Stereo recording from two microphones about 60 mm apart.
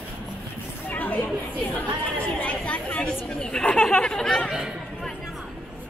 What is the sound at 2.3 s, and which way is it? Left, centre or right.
Chatter, left.